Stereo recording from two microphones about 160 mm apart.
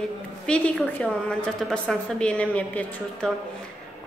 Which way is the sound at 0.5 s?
5° left (ahead or behind).